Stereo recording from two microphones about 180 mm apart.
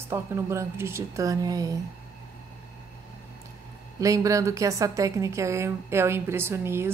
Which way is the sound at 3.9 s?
20° right (ahead or behind).